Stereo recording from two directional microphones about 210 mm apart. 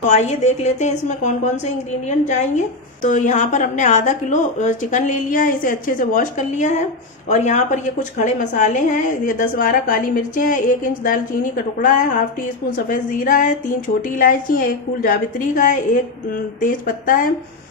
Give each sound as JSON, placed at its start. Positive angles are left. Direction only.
{"t": 0.0, "sound": "a woman's voice", "side_deg": 35}